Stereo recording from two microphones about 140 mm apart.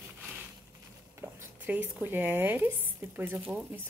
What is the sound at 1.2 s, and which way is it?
Speech, 15° right (ahead or behind).